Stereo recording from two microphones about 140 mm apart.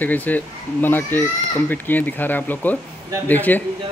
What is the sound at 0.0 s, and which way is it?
Speech, 10° left (ahead or behind).